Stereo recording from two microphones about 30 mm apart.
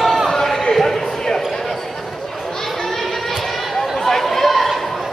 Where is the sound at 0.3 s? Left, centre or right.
Centre.